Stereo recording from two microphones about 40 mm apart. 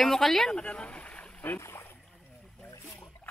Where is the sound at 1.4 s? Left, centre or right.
Left.